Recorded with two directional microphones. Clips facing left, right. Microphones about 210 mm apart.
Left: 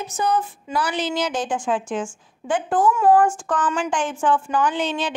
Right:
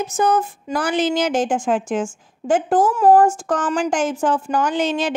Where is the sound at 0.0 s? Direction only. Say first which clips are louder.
Right 4 dB; 45° right (ahead or behind).